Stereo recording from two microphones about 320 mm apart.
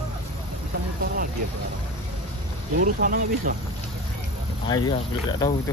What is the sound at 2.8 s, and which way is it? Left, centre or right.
Speech, right.